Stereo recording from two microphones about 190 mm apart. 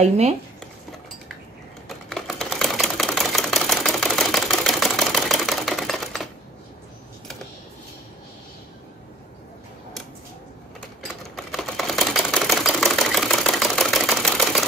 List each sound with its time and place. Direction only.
1.9 s typewriter: centre (ahead or behind)
11.3 s camera: centre (ahead or behind)